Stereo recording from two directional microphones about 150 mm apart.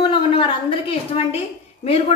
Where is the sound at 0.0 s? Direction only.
35° left (ahead or behind).